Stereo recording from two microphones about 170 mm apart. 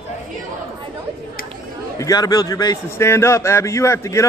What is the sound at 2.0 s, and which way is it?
A man's voice, 20° left (ahead or behind).